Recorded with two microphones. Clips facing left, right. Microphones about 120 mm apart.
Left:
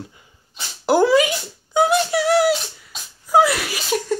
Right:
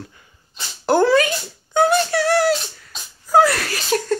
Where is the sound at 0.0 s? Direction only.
20° left (ahead or behind).